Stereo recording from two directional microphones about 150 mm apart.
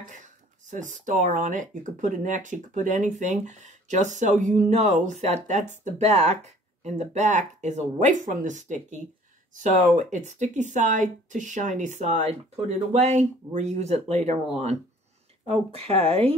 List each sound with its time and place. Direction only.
0.0 s speech: 55° right (ahead or behind)
15.4 s speech: 40° right (ahead or behind)